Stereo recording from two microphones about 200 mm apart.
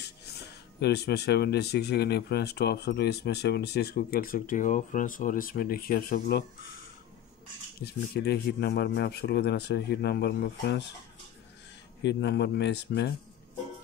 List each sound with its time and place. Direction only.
0.7 s speech: 55° left (ahead or behind)
7.8 s speech: 55° left (ahead or behind)
12.0 s speech: 60° left (ahead or behind)